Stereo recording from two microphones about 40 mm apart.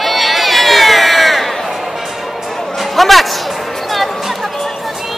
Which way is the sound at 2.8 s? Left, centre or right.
Centre.